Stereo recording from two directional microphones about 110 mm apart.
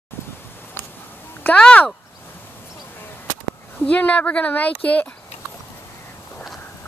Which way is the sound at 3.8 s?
10° left (ahead or behind).